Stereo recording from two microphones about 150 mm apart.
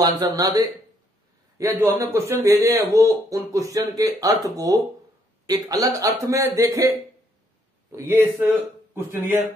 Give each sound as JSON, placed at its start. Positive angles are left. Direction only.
{"t": 0.0, "sound": "speech", "side_deg": -25}
{"t": 7.9, "sound": "speech", "side_deg": -15}